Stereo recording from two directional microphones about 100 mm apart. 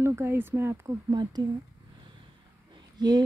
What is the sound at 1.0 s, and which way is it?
Speech, 45° right (ahead or behind).